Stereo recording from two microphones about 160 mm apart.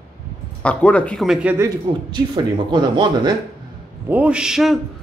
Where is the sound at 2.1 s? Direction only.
30° right (ahead or behind).